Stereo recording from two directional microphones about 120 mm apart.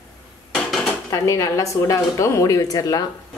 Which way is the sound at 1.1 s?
25° left (ahead or behind).